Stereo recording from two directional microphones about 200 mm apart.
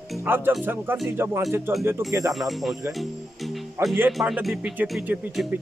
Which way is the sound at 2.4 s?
Centre (ahead or behind).